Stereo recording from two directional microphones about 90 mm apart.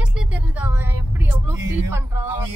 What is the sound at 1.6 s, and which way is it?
Music, 30° right (ahead or behind).